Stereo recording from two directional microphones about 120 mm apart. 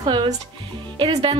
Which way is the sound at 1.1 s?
50° right (ahead or behind).